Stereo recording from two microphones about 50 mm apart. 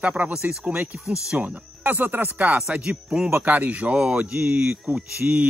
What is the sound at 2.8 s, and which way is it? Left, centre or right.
Speech, centre.